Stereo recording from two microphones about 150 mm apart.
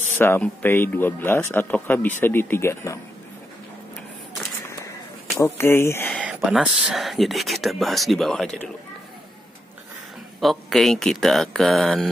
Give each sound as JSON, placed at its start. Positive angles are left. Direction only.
{"t": 0.2, "sound": "speech", "side_deg": 15}
{"t": 5.4, "sound": "speech", "side_deg": 15}
{"t": 6.2, "sound": "speech", "side_deg": -5}
{"t": 10.4, "sound": "speech", "side_deg": 0}